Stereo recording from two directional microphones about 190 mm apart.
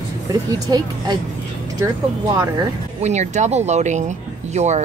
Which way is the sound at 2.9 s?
35° right (ahead or behind).